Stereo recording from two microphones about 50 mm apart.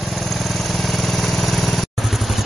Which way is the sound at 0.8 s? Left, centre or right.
Centre.